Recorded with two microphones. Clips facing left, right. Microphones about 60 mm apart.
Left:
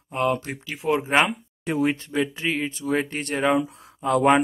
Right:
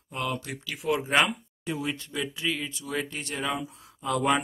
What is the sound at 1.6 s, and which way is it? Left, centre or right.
Speech, left.